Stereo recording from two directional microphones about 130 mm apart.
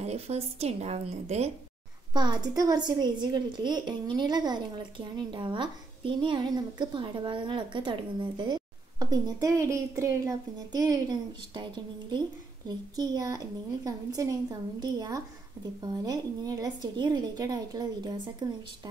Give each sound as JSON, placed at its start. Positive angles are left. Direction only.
{"t": 0.0, "sound": "a woman's voice", "side_deg": -55}
{"t": 2.1, "sound": "a woman's voice", "side_deg": -35}